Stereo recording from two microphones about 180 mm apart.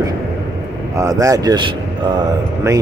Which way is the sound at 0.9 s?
15° right (ahead or behind).